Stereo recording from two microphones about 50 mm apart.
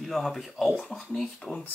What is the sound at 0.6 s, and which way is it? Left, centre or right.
Speech, centre.